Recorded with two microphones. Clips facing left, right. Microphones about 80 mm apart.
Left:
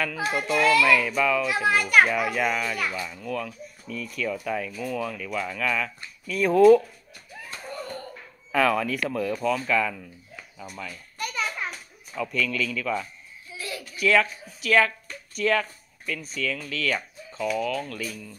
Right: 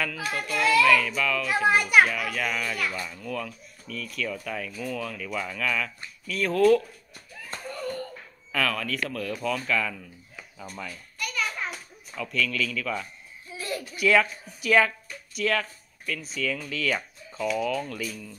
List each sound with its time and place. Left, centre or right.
0.3 s a child's voice: centre
8.5 s speech: centre
11.1 s children playing: left
11.6 s a child's voice: centre
13.5 s a sound: right
13.9 s speech: centre